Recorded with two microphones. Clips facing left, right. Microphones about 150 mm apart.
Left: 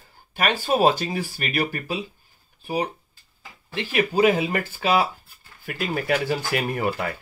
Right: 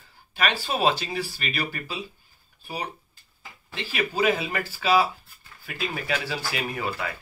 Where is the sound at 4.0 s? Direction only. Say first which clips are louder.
Left 5 dB; 45° left (ahead or behind).